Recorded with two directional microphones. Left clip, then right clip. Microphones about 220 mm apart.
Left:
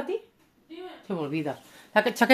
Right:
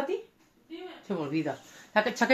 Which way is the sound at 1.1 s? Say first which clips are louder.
Left 1 dB; 30° left (ahead or behind).